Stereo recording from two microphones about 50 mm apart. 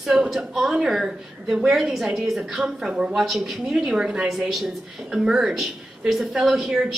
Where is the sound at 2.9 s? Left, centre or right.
Centre.